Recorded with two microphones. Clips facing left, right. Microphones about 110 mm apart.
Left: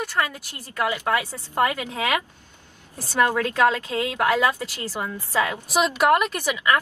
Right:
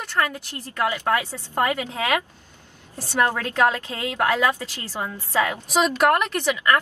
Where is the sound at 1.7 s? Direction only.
30° right (ahead or behind).